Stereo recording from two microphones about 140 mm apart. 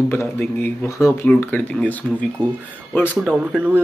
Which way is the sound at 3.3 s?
10° right (ahead or behind).